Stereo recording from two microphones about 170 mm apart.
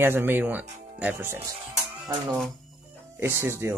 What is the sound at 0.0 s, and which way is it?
Speech, 15° right (ahead or behind).